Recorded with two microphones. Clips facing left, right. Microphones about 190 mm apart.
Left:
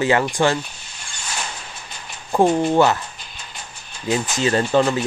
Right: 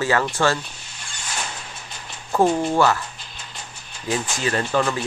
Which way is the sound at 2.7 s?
20° left (ahead or behind).